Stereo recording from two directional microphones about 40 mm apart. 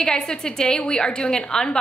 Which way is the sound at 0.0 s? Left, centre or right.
Centre.